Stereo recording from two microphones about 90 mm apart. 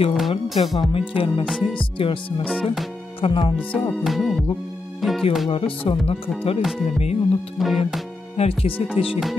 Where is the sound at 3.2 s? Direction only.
65° left (ahead or behind).